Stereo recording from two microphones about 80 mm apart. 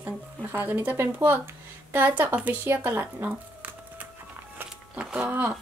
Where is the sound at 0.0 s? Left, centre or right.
Right.